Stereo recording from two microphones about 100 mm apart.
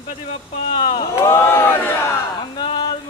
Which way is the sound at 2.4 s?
50° left (ahead or behind).